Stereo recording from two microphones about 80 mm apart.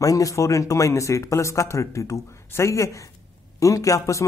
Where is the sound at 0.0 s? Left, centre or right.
Left.